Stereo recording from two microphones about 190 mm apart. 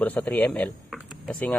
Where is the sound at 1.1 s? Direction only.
5° left (ahead or behind).